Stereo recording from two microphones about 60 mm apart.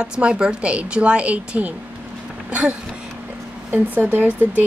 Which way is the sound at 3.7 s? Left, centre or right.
Right.